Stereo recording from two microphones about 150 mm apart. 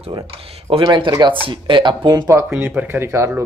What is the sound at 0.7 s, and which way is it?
Speech, 30° right (ahead or behind).